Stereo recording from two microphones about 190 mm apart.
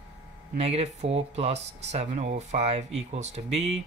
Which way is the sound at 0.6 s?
35° right (ahead or behind).